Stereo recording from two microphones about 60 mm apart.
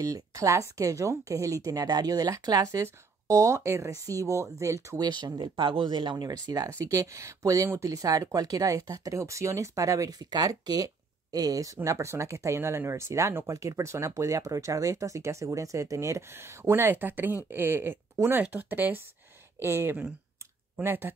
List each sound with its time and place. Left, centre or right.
0.0 s speech: right
3.5 s speech: right
4.0 s speech: right
6.7 s speech: right
9.2 s speech: right
18.2 s speech: right
19.6 s speech: right